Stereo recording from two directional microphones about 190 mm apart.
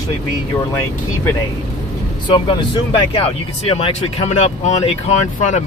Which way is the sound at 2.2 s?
25° left (ahead or behind).